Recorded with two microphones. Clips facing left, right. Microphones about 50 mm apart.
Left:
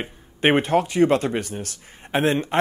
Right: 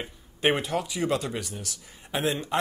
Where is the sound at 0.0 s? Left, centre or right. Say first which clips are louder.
Left 5 dB; left.